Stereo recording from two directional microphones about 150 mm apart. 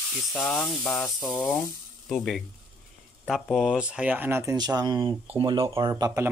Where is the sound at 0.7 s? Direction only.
5° left (ahead or behind); by 4.6 s 15° right (ahead or behind).